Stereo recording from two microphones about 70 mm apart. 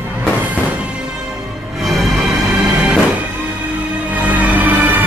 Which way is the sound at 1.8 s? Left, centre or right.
Centre.